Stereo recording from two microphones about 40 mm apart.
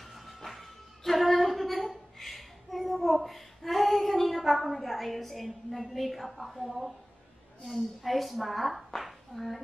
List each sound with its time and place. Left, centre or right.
0.0 s music: centre
7.6 s a woman's voice: centre